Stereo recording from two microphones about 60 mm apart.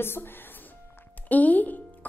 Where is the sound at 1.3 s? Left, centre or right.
Left.